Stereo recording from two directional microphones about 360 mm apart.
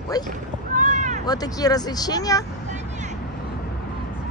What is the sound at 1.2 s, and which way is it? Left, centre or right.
Speech, centre.